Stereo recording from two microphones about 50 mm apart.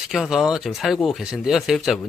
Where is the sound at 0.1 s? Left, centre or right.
Centre.